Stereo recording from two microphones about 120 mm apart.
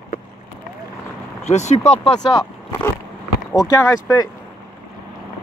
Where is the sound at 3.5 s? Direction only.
30° left (ahead or behind).